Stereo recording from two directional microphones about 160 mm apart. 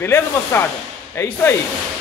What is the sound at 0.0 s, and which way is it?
Speech, 15° left (ahead or behind).